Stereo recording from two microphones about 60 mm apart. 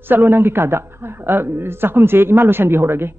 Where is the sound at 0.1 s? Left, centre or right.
Right.